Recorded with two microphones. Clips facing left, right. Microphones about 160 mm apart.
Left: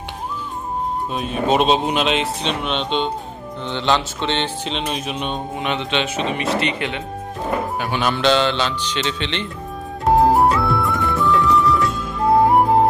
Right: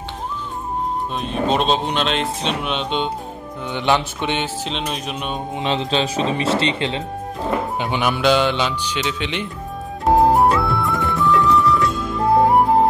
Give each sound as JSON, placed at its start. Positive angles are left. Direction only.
{"t": 1.1, "sound": "speech", "side_deg": 5}
{"t": 4.6, "sound": "speech", "side_deg": 0}
{"t": 5.5, "sound": "speech", "side_deg": -25}
{"t": 7.8, "sound": "speech", "side_deg": -15}
{"t": 10.0, "sound": "music", "side_deg": 0}